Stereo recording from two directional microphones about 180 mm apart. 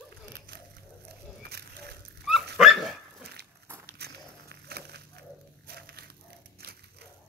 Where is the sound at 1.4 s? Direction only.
65° right (ahead or behind).